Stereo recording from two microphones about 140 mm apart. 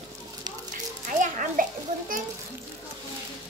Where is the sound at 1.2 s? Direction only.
70° right (ahead or behind).